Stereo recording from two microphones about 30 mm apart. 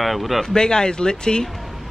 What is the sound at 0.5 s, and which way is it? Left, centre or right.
Speech, left.